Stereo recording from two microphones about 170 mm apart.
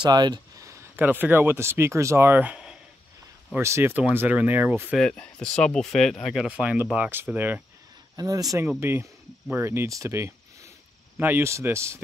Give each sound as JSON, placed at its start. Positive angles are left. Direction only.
{"t": 0.0, "sound": "speech", "side_deg": -25}
{"t": 4.9, "sound": "speech", "side_deg": 5}
{"t": 8.2, "sound": "speech", "side_deg": -20}